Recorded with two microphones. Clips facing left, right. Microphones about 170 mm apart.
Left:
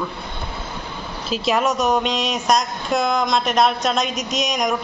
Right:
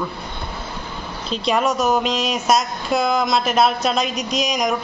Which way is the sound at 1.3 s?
Centre (ahead or behind).